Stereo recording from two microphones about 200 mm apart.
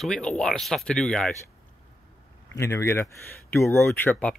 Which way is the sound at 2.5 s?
15° left (ahead or behind).